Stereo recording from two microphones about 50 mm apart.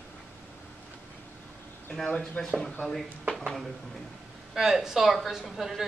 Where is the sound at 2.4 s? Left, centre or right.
Centre.